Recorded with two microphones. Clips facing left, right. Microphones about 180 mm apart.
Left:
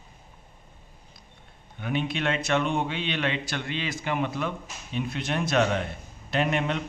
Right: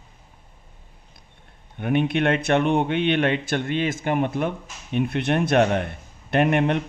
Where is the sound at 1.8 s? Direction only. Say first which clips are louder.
Right 7 dB; 55° right (ahead or behind).